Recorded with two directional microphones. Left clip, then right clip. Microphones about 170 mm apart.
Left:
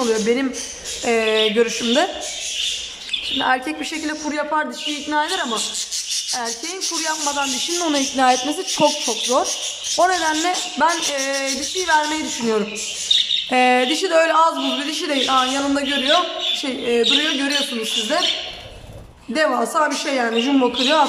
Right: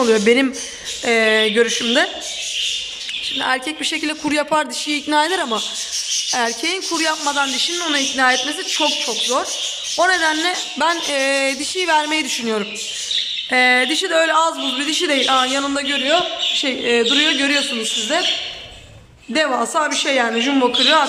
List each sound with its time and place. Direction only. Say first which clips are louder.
0.0 s a man's voice: right 5 dB; 5° right (ahead or behind)
3.3 s a man's voice: left 1 dB; centre (ahead or behind)
4.0 s a man's voice: right 2 dB; 10° right (ahead or behind)
6.4 s a man's voice: right 5 dB; 5° right (ahead or behind)
7.6 s a woman's voice: right 2 dB; 15° left (ahead or behind); by 12.6 s 5° right (ahead or behind)
13.5 s a man's voice: right 3 dB; 10° left (ahead or behind)
19.3 s a man's voice: even; centre (ahead or behind)